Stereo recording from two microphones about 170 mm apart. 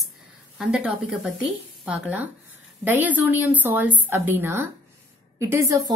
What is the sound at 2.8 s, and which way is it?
A woman's voice, 10° right (ahead or behind).